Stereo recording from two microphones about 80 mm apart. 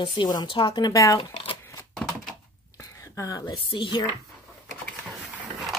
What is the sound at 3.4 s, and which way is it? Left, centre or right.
Speech, left.